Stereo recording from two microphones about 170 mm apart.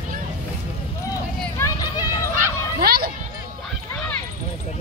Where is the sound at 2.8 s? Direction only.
65° right (ahead or behind).